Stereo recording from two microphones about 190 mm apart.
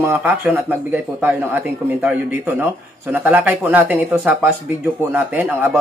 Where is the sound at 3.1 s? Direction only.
10° right (ahead or behind).